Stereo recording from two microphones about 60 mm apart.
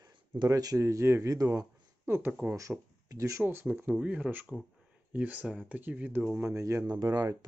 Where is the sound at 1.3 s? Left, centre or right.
Right.